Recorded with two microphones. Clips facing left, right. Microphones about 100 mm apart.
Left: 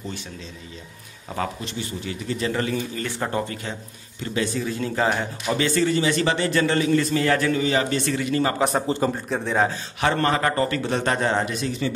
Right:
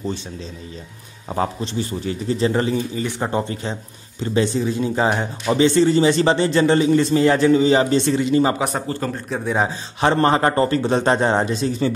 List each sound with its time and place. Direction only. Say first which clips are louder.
1.3 s speech: right 6 dB; 30° right (ahead or behind)
8.5 s a man's voice: left 1 dB; centre (ahead or behind)
8.8 s a man's voice: left 2 dB; 20° left (ahead or behind)
9.4 s a man's voice: right 2 dB; 15° right (ahead or behind)
9.9 s speech: right 6 dB; 30° right (ahead or behind)